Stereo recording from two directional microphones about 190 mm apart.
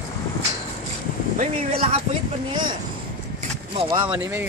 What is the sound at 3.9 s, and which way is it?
Speech, 10° right (ahead or behind).